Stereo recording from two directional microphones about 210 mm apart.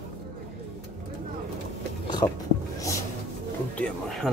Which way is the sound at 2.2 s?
25° left (ahead or behind).